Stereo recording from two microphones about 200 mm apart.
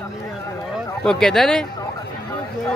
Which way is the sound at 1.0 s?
Centre (ahead or behind).